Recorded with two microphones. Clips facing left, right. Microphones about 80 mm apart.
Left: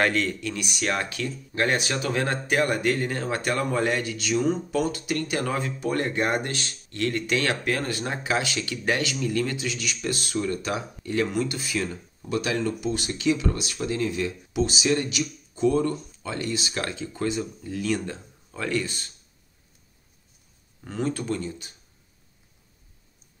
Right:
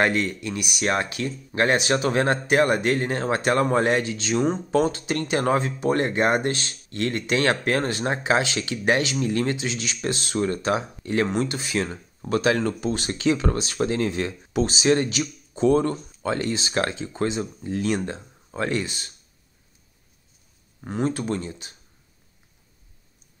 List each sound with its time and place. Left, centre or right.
0.0 s speech: centre
0.8 s speech: right
9.2 s speech: right
9.5 s speech: right
12.4 s speech: right
12.8 s speech: right
13.9 s speech: right
15.0 s speech: right
15.6 s speech: right
16.9 s speech: right
17.9 s speech: right
20.8 s speech: right